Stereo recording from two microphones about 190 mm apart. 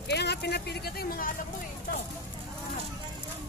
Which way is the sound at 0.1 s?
60° left (ahead or behind).